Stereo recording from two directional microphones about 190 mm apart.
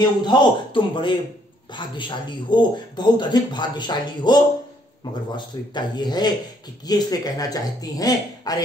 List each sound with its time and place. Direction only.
0.0 s a man's voice: 20° left (ahead or behind)